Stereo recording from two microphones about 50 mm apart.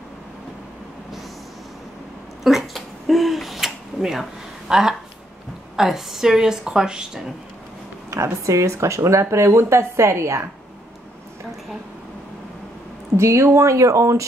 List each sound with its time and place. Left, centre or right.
2.4 s a sound: centre
5.8 s a woman's voice: centre
8.1 s a woman's voice: right
13.1 s a woman's voice: right